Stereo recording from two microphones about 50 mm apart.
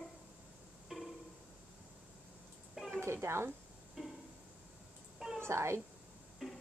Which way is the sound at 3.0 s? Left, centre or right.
Right.